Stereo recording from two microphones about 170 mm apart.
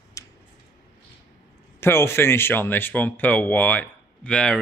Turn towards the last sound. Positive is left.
turn(degrees=5)  # may be behind; listen again after turning